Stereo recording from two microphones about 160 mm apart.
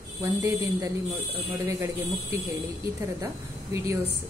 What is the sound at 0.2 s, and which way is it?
Speech, 20° right (ahead or behind).